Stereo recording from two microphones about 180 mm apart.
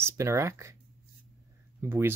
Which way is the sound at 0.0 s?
15° right (ahead or behind).